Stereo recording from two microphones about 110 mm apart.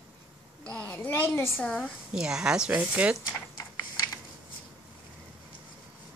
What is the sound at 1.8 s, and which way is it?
Speech, 5° right (ahead or behind).